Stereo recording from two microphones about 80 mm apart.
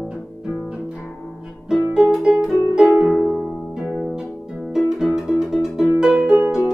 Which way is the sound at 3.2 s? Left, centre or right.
Centre.